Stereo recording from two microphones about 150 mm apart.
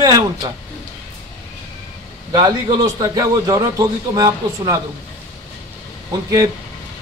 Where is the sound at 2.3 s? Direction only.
25° right (ahead or behind).